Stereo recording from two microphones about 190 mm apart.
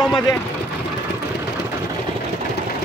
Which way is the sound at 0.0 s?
25° left (ahead or behind).